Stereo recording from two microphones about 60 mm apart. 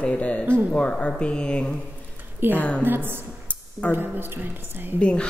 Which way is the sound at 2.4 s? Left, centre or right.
Right.